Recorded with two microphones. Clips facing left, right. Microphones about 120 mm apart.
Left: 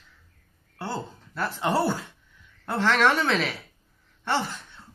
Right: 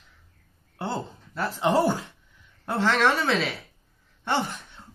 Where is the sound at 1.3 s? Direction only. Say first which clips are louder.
Right 3 dB; 15° right (ahead or behind).